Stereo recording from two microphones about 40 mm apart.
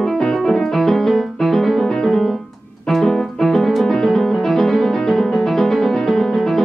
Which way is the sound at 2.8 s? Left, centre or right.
Centre.